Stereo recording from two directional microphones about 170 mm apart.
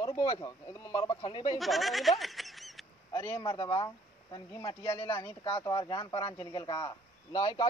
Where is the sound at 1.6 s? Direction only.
Centre (ahead or behind).